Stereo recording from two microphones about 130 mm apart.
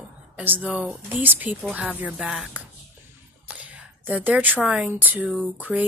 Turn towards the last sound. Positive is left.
turn(degrees=-15)  # may be behind; listen again after turning